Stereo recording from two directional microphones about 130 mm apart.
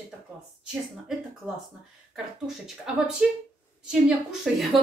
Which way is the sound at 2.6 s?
5° right (ahead or behind).